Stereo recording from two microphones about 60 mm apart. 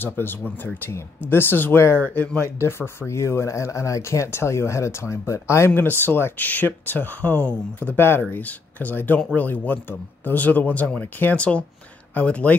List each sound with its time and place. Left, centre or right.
0.0 s speech: left
3.1 s speech: left
5.8 s speech: left
8.0 s speech: left
11.3 s speech: centre